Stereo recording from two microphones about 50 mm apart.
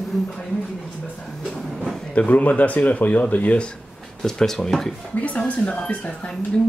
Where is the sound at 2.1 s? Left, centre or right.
Left.